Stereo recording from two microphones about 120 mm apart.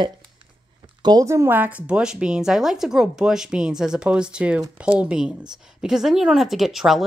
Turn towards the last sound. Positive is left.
turn(degrees=0)  # may be behind; listen again after turning